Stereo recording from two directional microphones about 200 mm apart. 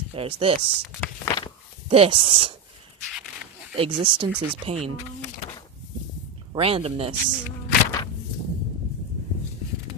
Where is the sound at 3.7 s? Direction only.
25° right (ahead or behind).